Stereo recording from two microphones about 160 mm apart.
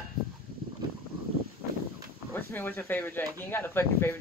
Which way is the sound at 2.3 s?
10° left (ahead or behind).